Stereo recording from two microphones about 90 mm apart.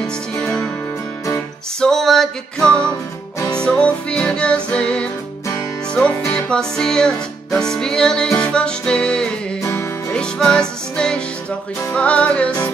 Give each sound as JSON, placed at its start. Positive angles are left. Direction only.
{"t": 0.0, "sound": "music", "side_deg": 10}
{"t": 1.8, "sound": "music", "side_deg": 5}
{"t": 9.6, "sound": "music", "side_deg": 30}
{"t": 10.1, "sound": "music", "side_deg": 10}